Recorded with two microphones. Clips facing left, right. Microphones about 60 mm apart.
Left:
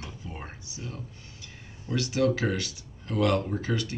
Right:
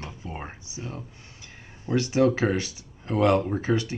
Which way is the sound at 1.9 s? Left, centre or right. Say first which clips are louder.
Right 4 dB; right.